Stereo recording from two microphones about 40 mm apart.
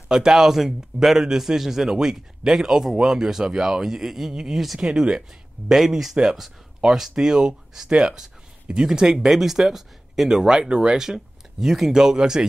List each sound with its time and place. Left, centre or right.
0.1 s a man's voice: centre
5.8 s a man's voice: centre